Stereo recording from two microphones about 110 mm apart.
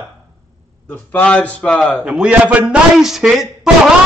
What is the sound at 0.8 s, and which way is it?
Speech, 15° left (ahead or behind).